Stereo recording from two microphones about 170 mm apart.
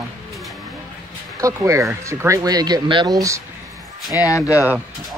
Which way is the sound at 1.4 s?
20° right (ahead or behind).